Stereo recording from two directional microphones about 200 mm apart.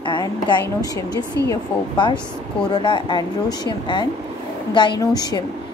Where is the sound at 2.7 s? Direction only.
25° left (ahead or behind).